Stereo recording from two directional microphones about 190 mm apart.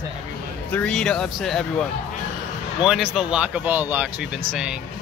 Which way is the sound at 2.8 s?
Centre (ahead or behind).